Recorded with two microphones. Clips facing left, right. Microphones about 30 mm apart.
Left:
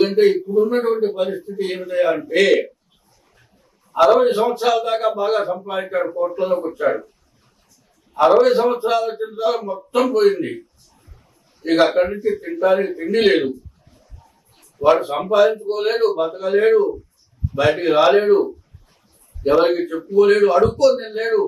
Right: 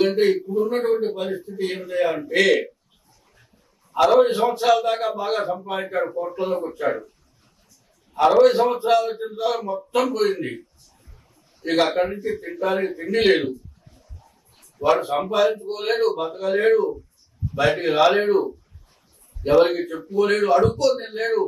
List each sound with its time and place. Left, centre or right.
0.0 s a man's voice: centre
3.9 s a man's voice: centre
8.4 s a man's voice: centre
11.6 s a man's voice: centre
14.6 s a man's voice: centre